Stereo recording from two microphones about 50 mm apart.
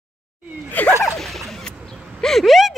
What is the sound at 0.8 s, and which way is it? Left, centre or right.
Speech, left.